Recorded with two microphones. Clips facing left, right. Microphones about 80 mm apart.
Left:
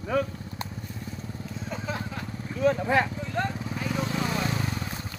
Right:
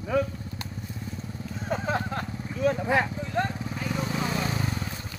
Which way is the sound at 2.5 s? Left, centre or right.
Centre.